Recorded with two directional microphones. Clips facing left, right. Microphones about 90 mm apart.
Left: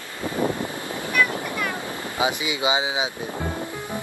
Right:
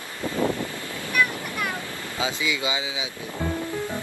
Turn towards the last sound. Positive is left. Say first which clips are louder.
# left 5 dB
turn(degrees=20)  # may be behind; listen again after turning